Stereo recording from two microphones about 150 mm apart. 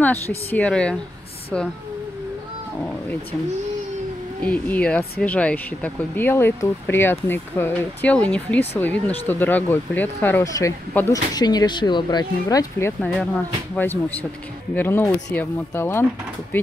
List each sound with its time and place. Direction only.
0.5 s speech: 10° left (ahead or behind)
4.4 s speech: 10° left (ahead or behind)
13.1 s speech: 5° left (ahead or behind)